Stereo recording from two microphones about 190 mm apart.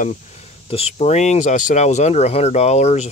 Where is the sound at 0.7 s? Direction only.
30° left (ahead or behind).